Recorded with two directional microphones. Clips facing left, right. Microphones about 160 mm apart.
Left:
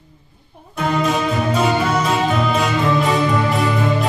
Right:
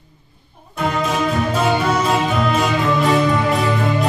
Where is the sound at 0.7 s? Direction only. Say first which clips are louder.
Left 1 dB; centre (ahead or behind).